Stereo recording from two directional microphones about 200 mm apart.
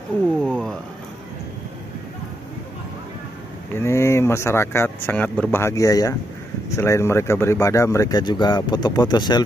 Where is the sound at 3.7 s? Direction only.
15° left (ahead or behind).